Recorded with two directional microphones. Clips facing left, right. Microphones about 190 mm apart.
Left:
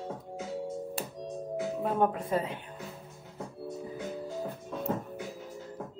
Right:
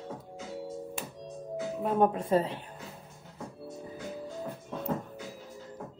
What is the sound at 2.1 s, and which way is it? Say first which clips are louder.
Speech: right 4 dB; 30° right (ahead or behind).